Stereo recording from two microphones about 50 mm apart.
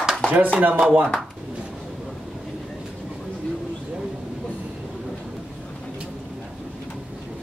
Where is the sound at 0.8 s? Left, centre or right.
Right.